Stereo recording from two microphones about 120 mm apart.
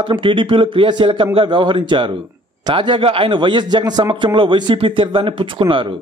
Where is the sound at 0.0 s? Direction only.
45° right (ahead or behind).